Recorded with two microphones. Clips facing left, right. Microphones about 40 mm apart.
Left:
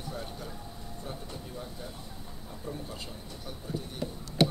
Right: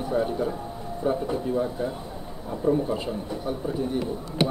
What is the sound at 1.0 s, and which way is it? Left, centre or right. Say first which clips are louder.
Speech: right 18 dB; right.